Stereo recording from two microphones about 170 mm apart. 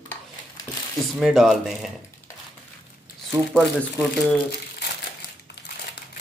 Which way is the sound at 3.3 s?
5° left (ahead or behind).